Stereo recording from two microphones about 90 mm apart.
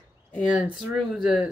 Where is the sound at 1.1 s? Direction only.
10° right (ahead or behind).